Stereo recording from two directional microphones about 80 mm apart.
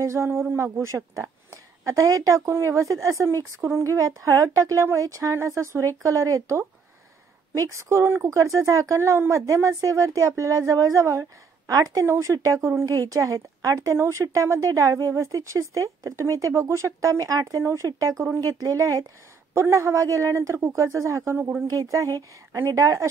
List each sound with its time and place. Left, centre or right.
0.0 s a woman's voice: right
11.7 s speech: right
12.1 s a woman's voice: right
19.5 s a woman's voice: right